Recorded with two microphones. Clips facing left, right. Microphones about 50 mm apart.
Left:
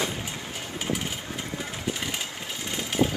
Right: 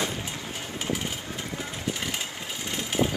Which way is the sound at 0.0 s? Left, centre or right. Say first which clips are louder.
Even; centre.